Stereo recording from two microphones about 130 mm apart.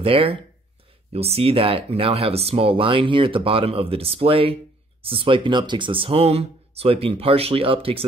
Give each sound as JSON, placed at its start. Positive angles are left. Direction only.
{"t": 0.0, "sound": "speech", "side_deg": -45}